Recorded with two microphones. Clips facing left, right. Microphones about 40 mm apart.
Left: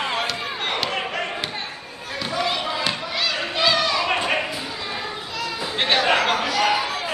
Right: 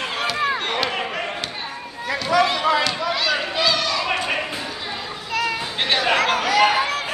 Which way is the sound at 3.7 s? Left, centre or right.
Centre.